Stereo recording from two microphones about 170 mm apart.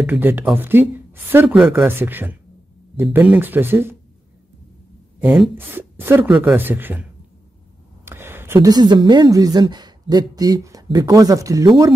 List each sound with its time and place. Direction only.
0.0 s speech: 10° right (ahead or behind)
5.2 s speech: 10° right (ahead or behind)
8.0 s a sound: 15° right (ahead or behind)
8.5 s a woman's voice: 25° right (ahead or behind)